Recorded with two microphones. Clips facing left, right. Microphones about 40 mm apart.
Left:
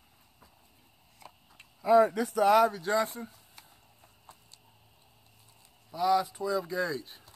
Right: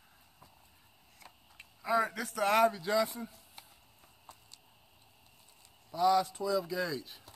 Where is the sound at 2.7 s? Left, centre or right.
Left.